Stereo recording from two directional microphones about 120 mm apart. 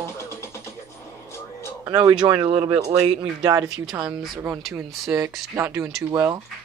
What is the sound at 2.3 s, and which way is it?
Speech, 45° right (ahead or behind).